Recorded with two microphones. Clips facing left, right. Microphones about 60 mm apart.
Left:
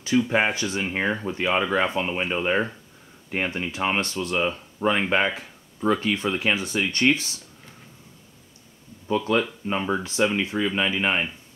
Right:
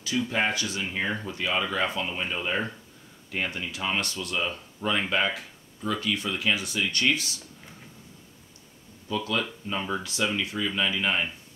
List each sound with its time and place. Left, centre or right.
0.4 s speech: left
3.3 s speech: left
9.0 s speech: left